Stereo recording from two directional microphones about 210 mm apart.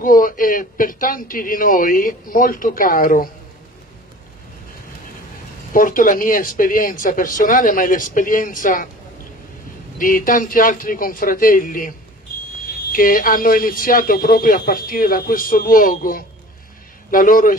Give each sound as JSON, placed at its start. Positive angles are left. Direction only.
{"t": 0.0, "sound": "speech", "side_deg": 40}
{"t": 5.7, "sound": "speech", "side_deg": 40}
{"t": 9.9, "sound": "speech", "side_deg": 40}
{"t": 12.9, "sound": "speech", "side_deg": 40}